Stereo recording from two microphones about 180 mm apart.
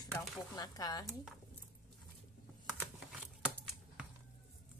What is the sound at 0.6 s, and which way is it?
Speech, 20° left (ahead or behind).